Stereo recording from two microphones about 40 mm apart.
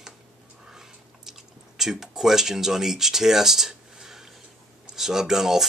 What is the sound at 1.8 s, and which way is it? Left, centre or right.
Speech, centre.